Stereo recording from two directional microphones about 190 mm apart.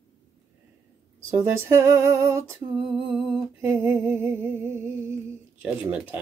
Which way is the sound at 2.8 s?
Centre (ahead or behind).